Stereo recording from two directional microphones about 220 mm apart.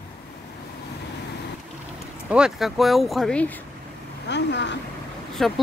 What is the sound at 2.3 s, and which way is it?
Speech, centre (ahead or behind).